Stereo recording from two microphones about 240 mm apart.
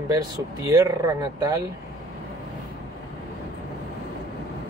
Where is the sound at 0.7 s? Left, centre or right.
Centre.